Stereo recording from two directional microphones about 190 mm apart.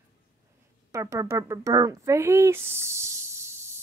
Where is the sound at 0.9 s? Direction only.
15° right (ahead or behind).